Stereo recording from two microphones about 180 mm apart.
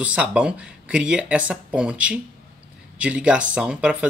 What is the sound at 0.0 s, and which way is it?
Speech, 5° right (ahead or behind).